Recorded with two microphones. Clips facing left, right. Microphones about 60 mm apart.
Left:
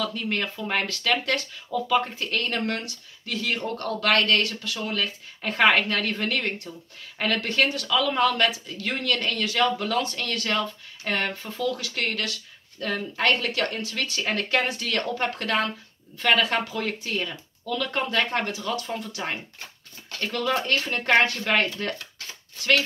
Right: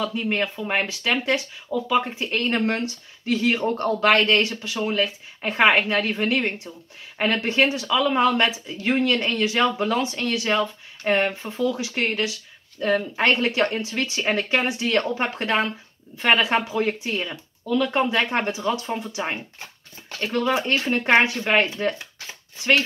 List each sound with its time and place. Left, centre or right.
0.0 s speech: centre